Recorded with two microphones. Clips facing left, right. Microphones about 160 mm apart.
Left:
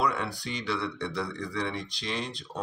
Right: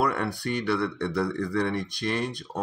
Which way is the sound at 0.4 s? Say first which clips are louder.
Right 6 dB; 55° right (ahead or behind).